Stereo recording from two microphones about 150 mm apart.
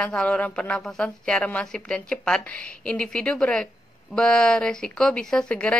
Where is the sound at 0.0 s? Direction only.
10° left (ahead or behind).